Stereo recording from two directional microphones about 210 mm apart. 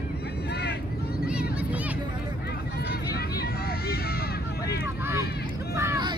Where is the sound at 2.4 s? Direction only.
50° left (ahead or behind).